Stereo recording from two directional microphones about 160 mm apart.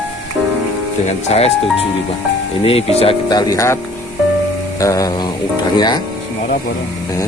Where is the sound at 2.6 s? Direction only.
40° left (ahead or behind).